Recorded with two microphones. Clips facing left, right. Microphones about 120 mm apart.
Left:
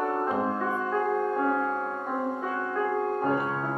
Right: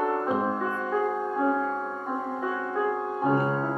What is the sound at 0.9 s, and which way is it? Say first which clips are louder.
Music: left 1 dB; 10° right (ahead or behind).